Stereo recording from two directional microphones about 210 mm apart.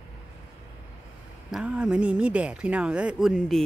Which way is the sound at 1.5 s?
5° right (ahead or behind).